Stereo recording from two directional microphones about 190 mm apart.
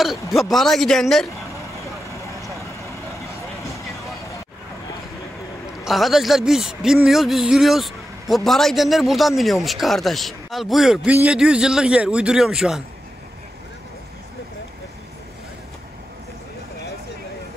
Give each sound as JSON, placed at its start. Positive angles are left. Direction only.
{"t": 0.4, "sound": "a man's voice", "side_deg": 0}
{"t": 2.2, "sound": "vehicle", "side_deg": 15}
{"t": 5.9, "sound": "a man's voice", "side_deg": 0}